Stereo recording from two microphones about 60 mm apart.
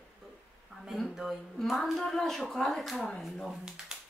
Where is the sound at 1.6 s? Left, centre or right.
Centre.